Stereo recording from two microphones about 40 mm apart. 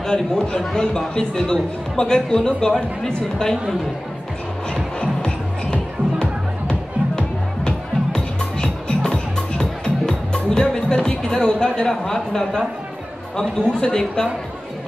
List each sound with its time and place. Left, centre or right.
0.0 s a man's voice: centre
5.0 s music: centre
11.8 s a man's voice: centre